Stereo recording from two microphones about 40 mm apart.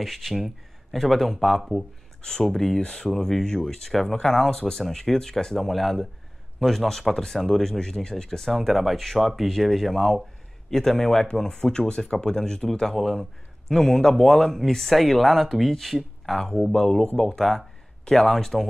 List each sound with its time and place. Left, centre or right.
0.0 s speech: centre
2.4 s speech: centre
8.5 s speech: centre
10.7 s speech: centre
13.7 s speech: centre
16.3 s speech: centre